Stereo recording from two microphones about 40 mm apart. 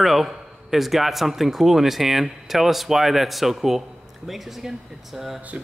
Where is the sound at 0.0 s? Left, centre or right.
Centre.